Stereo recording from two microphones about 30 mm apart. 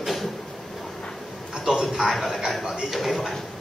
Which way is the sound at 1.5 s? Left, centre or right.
Centre.